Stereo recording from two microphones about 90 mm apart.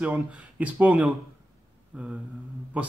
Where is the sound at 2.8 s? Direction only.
15° right (ahead or behind).